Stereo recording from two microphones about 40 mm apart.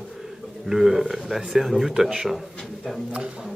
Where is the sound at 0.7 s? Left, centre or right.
Centre.